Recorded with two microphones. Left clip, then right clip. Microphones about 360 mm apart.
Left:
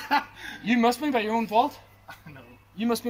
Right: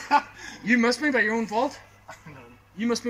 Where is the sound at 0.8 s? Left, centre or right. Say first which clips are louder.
Even; centre.